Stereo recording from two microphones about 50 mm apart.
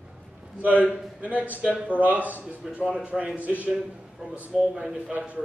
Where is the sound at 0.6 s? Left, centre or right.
Right.